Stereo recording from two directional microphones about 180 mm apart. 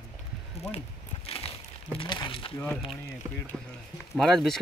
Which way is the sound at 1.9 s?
25° left (ahead or behind).